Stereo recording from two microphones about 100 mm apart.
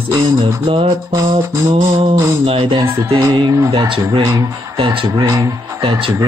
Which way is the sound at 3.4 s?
55° right (ahead or behind).